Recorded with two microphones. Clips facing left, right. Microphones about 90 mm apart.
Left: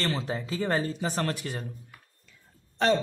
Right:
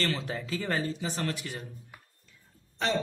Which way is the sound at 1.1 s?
45° left (ahead or behind).